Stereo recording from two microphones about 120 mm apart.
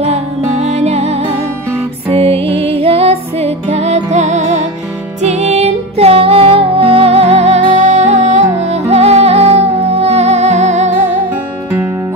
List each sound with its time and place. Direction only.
0.0 s music: 65° right (ahead or behind)